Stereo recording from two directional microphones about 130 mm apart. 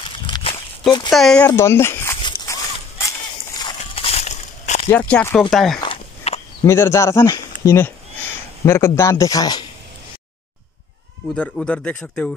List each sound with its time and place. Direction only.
0.3 s walk: 45° left (ahead or behind)
1.1 s speech: 5° left (ahead or behind)
1.5 s speech: 20° left (ahead or behind)
3.0 s a sound: 25° left (ahead or behind)
3.9 s a sound: 50° left (ahead or behind)
4.9 s speech: 10° left (ahead or behind)
6.3 s a sound: 50° left (ahead or behind)
6.6 s speech: 20° left (ahead or behind)
11.3 s speech: 5° left (ahead or behind)